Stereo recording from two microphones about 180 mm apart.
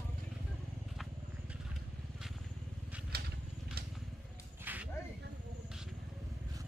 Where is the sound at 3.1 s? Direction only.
60° right (ahead or behind).